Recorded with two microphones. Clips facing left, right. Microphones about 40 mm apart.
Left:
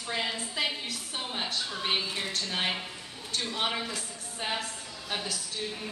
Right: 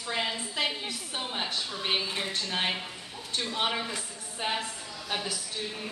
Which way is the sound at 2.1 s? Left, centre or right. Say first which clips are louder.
Right 1 dB; centre.